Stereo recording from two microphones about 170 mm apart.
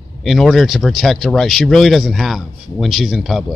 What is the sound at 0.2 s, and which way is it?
A man's voice, centre (ahead or behind).